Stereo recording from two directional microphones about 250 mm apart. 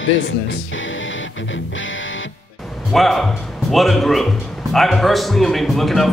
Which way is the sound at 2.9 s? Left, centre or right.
Centre.